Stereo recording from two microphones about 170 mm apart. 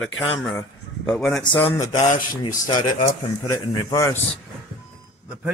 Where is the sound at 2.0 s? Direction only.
25° left (ahead or behind).